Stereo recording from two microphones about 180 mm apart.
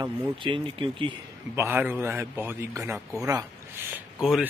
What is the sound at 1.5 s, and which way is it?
Speech, 10° right (ahead or behind).